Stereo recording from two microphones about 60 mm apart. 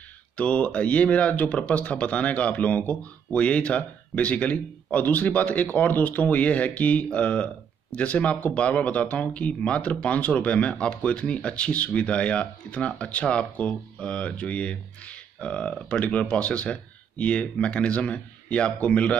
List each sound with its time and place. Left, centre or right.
0.4 s speech: left